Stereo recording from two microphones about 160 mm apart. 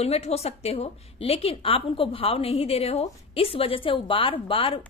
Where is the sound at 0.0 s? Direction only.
40° left (ahead or behind).